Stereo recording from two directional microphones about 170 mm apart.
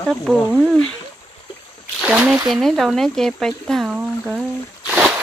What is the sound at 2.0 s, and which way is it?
Speech, 5° right (ahead or behind).